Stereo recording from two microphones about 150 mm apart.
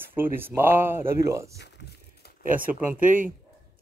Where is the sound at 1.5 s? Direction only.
90° left.